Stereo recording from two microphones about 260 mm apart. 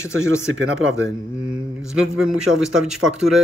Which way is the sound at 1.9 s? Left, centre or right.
Centre.